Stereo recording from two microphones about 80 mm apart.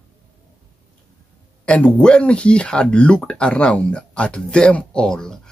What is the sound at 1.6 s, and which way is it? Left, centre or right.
Speech, centre.